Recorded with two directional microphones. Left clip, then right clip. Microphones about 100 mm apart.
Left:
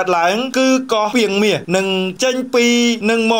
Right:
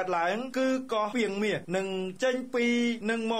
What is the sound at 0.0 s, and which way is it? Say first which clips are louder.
Speech: left 13 dB; 40° left (ahead or behind).